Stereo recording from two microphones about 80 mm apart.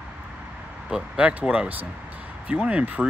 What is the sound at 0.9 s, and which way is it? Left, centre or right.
Speech, centre.